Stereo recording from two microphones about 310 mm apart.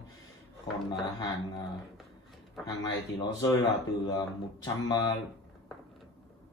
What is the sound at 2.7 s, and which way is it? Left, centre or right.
Speech, centre.